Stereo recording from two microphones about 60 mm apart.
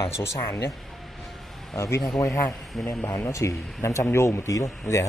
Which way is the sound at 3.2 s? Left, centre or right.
Left.